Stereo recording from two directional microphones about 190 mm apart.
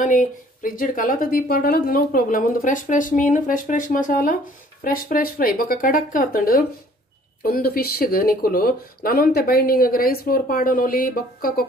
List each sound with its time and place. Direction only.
0.0 s speech: 45° left (ahead or behind)